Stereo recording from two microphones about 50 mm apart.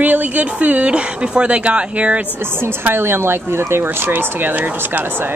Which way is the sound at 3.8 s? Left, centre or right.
Right.